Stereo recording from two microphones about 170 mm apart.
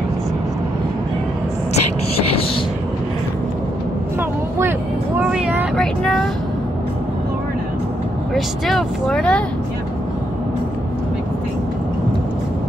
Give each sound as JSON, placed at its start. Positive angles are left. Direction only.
{"t": 2.1, "sound": "a sound", "side_deg": 35}
{"t": 4.2, "sound": "vehicle", "side_deg": -15}
{"t": 8.4, "sound": "vehicle", "side_deg": 0}